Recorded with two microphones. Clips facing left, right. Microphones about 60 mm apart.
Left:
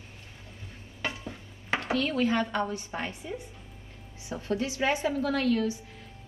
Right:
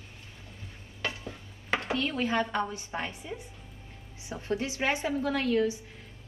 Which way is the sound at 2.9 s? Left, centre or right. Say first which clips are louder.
Right 2 dB; centre.